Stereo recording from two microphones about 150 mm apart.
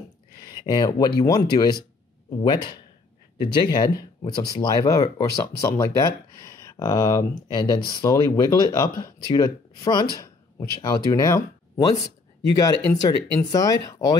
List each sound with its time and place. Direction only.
0.4 s speech: 30° left (ahead or behind)
10.1 s a sound: 25° left (ahead or behind)
10.8 s speech: 25° left (ahead or behind)